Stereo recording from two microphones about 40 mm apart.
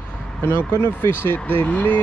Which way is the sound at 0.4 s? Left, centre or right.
Left.